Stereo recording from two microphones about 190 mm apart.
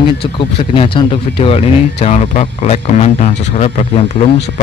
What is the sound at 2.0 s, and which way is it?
Speech, 40° left (ahead or behind).